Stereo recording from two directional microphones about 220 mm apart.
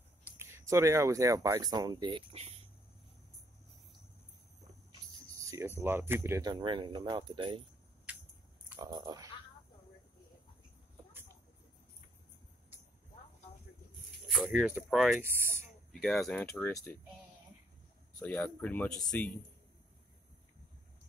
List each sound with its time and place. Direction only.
0.4 s speech: 10° right (ahead or behind)
5.2 s music: 15° right (ahead or behind)
5.8 s speech: 10° right (ahead or behind)
8.1 s a sound: 5° right (ahead or behind)
8.7 s speech: 20° right (ahead or behind)
14.2 s speech: centre (ahead or behind)
15.9 s speech: centre (ahead or behind)
18.2 s speech: 5° left (ahead or behind)